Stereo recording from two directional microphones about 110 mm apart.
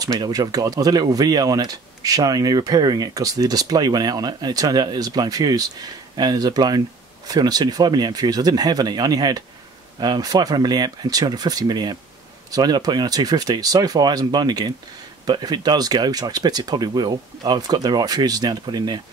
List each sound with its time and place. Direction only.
0.0 s speech: 35° right (ahead or behind)